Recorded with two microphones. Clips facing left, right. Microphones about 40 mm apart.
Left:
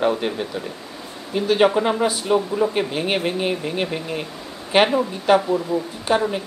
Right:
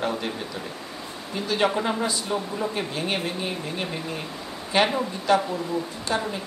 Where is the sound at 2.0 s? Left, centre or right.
Left.